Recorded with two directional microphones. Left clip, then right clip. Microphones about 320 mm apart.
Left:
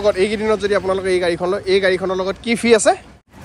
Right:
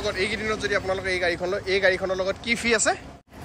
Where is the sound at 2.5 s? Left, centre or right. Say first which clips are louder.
Left 11 dB; centre.